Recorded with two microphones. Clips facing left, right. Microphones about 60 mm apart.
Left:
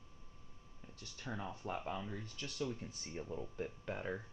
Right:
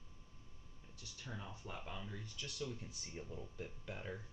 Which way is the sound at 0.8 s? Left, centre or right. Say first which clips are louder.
Left 4 dB; left.